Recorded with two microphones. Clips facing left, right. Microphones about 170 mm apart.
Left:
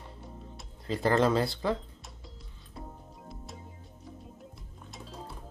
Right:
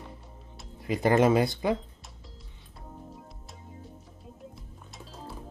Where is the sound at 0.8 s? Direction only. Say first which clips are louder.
Right 3 dB; 15° right (ahead or behind).